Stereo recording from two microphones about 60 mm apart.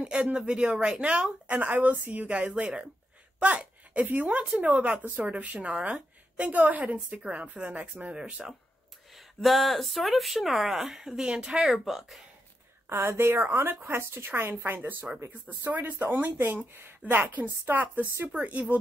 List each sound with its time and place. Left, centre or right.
0.0 s speech: centre
9.1 s speech: centre
12.9 s speech: right